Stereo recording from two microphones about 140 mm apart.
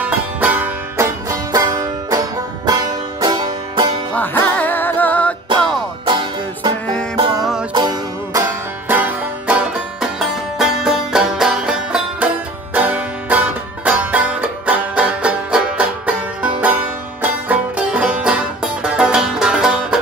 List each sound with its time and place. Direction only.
0.0 s music: 10° right (ahead or behind); by 3.9 s 30° right (ahead or behind)
4.1 s music: 10° left (ahead or behind)
6.0 s music: 35° right (ahead or behind)
7.7 s music: 25° right (ahead or behind)
8.8 s music: 10° right (ahead or behind)
17.2 s music: 10° right (ahead or behind)